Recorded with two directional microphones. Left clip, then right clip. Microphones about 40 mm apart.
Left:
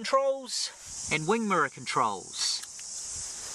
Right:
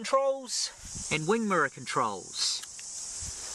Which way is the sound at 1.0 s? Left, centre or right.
Centre.